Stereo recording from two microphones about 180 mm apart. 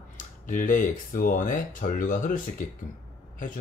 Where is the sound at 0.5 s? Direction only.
45° left (ahead or behind).